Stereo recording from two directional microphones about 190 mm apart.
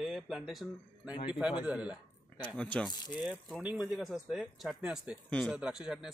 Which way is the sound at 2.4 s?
5° left (ahead or behind).